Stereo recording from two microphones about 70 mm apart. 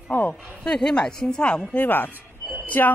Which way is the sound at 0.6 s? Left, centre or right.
Centre.